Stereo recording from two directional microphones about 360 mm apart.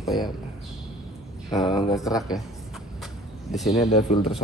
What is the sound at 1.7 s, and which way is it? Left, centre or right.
Speech, centre.